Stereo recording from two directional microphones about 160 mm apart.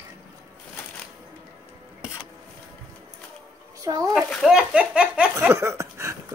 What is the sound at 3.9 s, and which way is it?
Speech, 25° right (ahead or behind).